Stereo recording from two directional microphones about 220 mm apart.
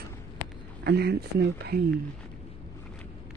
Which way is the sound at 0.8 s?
50° right (ahead or behind).